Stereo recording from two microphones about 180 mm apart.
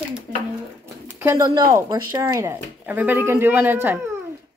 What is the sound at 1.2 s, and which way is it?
A woman's voice, 20° right (ahead or behind).